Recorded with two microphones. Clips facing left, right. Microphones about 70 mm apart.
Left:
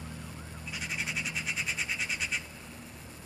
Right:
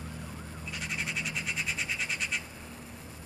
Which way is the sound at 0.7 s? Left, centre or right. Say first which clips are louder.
Even; centre.